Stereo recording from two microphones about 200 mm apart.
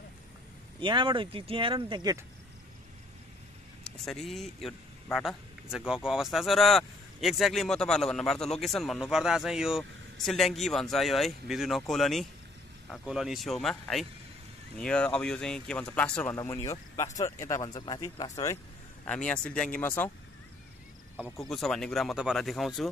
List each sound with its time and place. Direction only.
0.7 s speech: 25° right (ahead or behind)
4.0 s a man's voice: centre (ahead or behind)
19.0 s speech: 5° left (ahead or behind)
21.2 s speech: centre (ahead or behind)